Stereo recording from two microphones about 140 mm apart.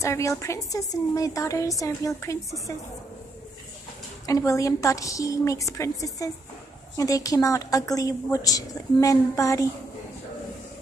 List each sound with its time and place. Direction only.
0.0 s a woman's voice: 20° left (ahead or behind)
4.3 s a woman's voice: 25° left (ahead or behind)